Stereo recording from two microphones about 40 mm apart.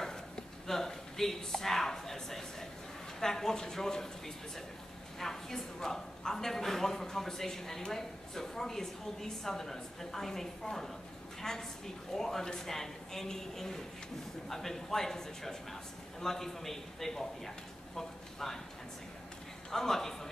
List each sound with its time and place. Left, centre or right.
0.0 s a sound: centre
3.2 s a woman's voice: centre
5.2 s a woman's voice: centre
19.7 s a woman's voice: centre